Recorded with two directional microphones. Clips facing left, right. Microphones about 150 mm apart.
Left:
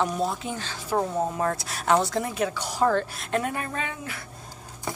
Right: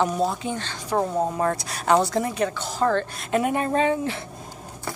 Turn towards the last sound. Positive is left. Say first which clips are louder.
# right 11 dB
turn(degrees=-30)  # may be behind; listen again after turning